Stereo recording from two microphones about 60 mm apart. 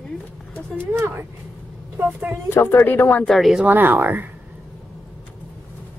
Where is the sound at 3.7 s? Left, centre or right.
Right.